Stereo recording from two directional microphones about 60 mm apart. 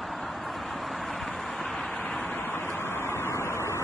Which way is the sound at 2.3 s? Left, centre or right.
Left.